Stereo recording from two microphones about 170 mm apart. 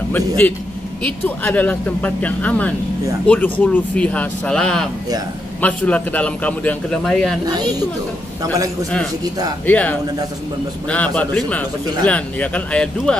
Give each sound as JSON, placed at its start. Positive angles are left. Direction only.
{"t": 1.0, "sound": "a man's voice", "side_deg": 10}
{"t": 7.4, "sound": "speech", "side_deg": -25}
{"t": 9.7, "sound": "a man's voice", "side_deg": 10}